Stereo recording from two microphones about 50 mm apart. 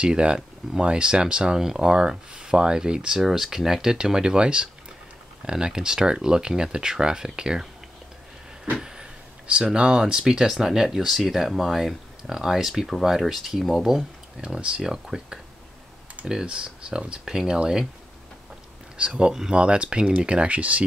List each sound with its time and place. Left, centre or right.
0.0 s speech: right
3.2 s speech: centre
8.7 s speech: centre
14.4 s speech: centre
18.9 s speech: centre